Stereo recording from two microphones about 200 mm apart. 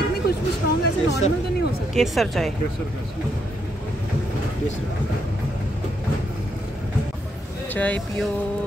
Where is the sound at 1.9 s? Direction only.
Centre (ahead or behind).